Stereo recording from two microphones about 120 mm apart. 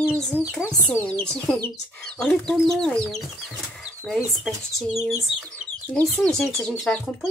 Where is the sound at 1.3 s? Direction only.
5° left (ahead or behind).